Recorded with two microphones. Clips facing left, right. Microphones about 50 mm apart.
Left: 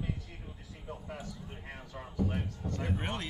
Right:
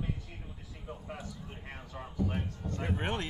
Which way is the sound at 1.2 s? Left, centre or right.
Right.